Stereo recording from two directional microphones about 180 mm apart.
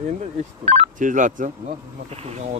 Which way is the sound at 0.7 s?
40° right (ahead or behind).